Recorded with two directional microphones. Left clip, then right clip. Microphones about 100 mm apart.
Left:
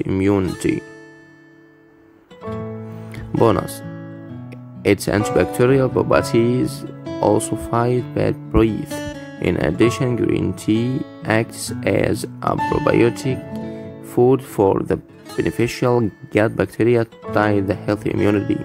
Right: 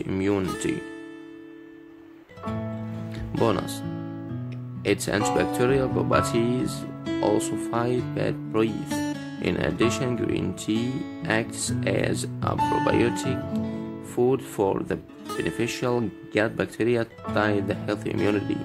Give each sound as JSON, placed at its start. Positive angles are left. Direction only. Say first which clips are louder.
{"t": 0.6, "sound": "speech", "louder": "left 8 dB", "side_deg": 45}
{"t": 3.3, "sound": "speech", "louder": "left 8 dB", "side_deg": 45}
{"t": 4.8, "sound": "speech", "louder": "left 6 dB", "side_deg": 50}